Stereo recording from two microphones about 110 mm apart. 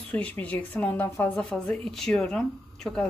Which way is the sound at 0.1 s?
15° left (ahead or behind).